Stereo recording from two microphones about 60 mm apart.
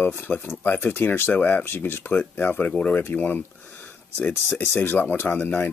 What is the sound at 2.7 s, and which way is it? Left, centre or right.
Speech, centre.